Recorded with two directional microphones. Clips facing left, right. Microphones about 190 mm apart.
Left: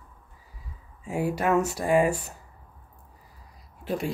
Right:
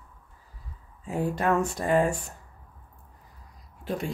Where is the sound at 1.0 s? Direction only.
10° left (ahead or behind).